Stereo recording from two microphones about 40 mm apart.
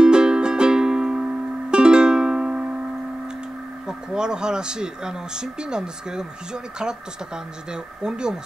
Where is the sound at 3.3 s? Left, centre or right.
Centre.